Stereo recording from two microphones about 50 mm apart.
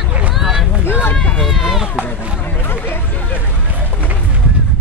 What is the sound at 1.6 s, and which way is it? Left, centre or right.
Speech, centre.